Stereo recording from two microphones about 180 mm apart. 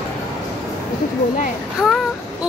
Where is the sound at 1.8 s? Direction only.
Centre (ahead or behind).